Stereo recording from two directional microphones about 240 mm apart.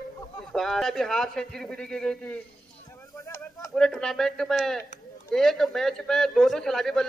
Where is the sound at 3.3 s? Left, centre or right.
Centre.